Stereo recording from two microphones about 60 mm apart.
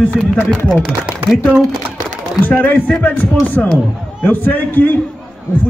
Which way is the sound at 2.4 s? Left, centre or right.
Left.